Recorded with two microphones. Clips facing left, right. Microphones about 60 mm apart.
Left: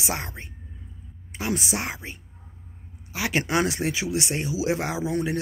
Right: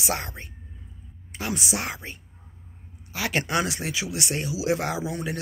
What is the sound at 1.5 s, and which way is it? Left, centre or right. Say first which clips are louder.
Speech: left 2 dB; left.